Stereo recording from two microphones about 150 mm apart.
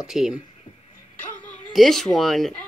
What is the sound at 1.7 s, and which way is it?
Speech, centre (ahead or behind).